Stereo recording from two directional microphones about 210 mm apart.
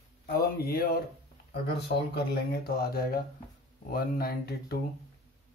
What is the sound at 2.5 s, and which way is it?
Speech, 45° left (ahead or behind).